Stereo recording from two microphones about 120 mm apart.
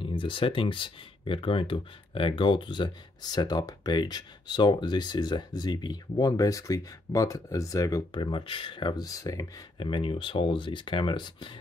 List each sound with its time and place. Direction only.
0.0 s speech: 45° left (ahead or behind); by 8.2 s 30° left (ahead or behind)
8.2 s speech: 45° left (ahead or behind)
9.8 s speech: 45° left (ahead or behind)